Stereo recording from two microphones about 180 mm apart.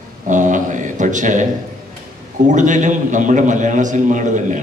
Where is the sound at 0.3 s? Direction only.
45° right (ahead or behind).